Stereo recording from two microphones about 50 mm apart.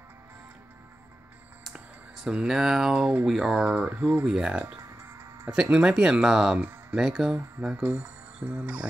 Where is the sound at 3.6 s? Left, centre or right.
Right.